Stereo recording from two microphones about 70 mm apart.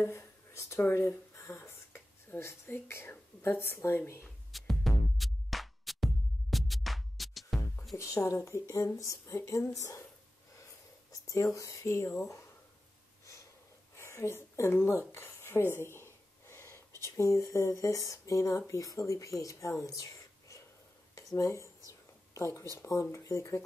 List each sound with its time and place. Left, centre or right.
0.0 s speech: left
4.5 s music: centre
7.9 s speech: left
11.1 s speech: left
13.9 s a sound: left
18.7 s speech: left
21.1 s a sound: left
22.8 s speech: left